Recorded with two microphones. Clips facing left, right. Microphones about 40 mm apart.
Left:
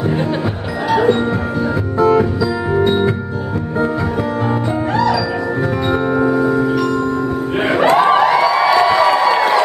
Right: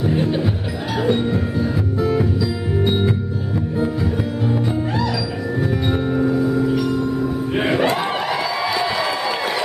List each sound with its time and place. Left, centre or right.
6.1 s music: left
7.6 s music: centre
8.5 s a sound: left